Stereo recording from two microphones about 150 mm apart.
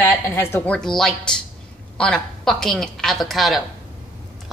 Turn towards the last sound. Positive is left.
turn(degrees=0)  # may be behind; listen again after turning